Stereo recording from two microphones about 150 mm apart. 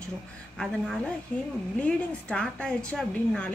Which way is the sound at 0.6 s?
5° left (ahead or behind).